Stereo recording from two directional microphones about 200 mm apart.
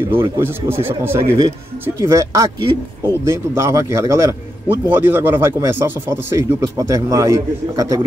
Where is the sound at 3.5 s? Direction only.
15° right (ahead or behind).